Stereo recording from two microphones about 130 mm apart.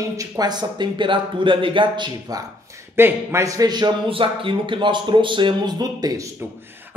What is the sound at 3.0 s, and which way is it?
Speech, 20° right (ahead or behind).